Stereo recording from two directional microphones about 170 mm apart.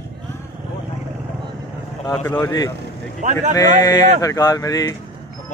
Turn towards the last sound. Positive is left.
turn(degrees=20)  # may be behind; listen again after turning